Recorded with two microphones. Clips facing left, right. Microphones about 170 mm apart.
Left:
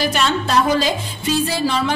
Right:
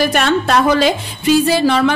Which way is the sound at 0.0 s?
60° right (ahead or behind).